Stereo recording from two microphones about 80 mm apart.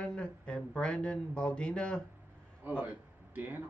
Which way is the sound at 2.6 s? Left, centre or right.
Right.